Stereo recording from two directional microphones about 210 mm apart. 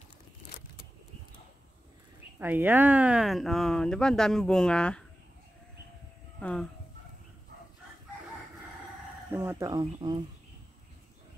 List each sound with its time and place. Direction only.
2.3 s speech: 10° right (ahead or behind)
6.4 s speech: 5° left (ahead or behind)
9.3 s speech: 10° right (ahead or behind)